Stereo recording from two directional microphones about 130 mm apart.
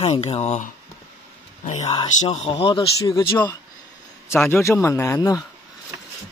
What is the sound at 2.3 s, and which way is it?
Speech, 50° left (ahead or behind).